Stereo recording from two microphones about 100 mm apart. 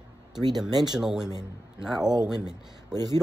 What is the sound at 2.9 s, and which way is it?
Speech, 40° right (ahead or behind).